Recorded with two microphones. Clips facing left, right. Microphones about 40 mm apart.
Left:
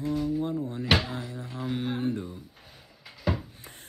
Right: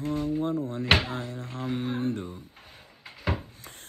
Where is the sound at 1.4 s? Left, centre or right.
Right.